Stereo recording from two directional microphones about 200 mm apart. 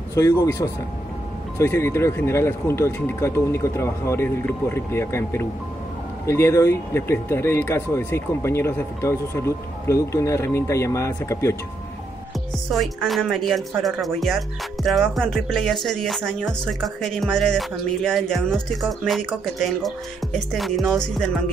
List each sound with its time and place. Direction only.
0.1 s speech: 15° left (ahead or behind)
12.7 s speech: centre (ahead or behind)